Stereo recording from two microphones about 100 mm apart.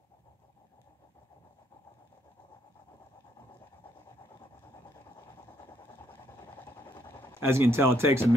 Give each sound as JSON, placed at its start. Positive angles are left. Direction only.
{"t": 6.3, "sound": "vehicle", "side_deg": 35}
{"t": 7.0, "sound": "engine", "side_deg": 30}
{"t": 7.3, "sound": "speech", "side_deg": -25}